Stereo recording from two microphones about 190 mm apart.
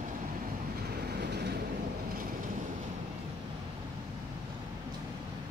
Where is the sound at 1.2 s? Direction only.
60° right (ahead or behind).